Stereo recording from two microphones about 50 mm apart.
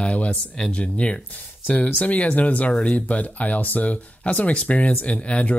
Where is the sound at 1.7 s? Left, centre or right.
Left.